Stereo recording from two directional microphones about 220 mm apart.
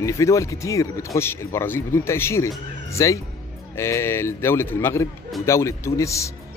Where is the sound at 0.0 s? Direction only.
15° left (ahead or behind).